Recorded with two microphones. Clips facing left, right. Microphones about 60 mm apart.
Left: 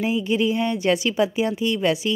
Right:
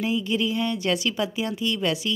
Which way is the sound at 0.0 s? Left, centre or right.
Centre.